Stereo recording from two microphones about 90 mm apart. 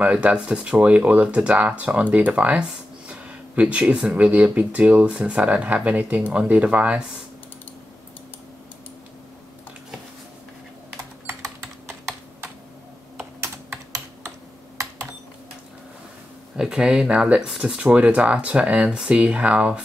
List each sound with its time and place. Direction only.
0.0 s speech: 15° right (ahead or behind)
11.2 s typing: 30° right (ahead or behind)
13.4 s computer keyboard: 30° right (ahead or behind)
16.5 s speech: 10° right (ahead or behind)